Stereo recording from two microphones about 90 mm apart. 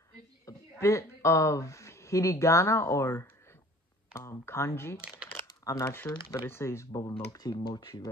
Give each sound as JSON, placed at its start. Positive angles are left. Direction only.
{"t": 0.5, "sound": "speech", "side_deg": 35}
{"t": 5.0, "sound": "a sound", "side_deg": -10}
{"t": 5.6, "sound": "speech", "side_deg": 35}
{"t": 7.0, "sound": "speech", "side_deg": 45}
{"t": 7.5, "sound": "speech", "side_deg": 60}